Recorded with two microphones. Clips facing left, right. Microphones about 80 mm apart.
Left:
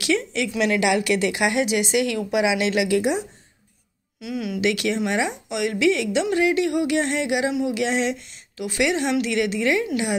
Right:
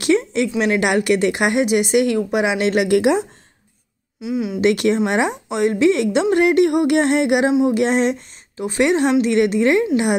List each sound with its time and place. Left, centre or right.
0.0 s a woman's voice: right
3.0 s a woman's voice: right
4.2 s speech: right
4.6 s a woman's voice: right